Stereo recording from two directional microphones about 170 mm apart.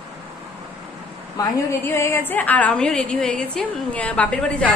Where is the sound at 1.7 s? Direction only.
15° left (ahead or behind).